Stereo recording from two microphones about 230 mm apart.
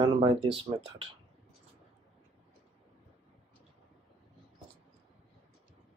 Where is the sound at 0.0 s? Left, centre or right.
Centre.